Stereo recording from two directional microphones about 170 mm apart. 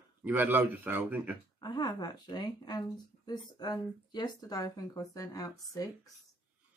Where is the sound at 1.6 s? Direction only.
25° left (ahead or behind).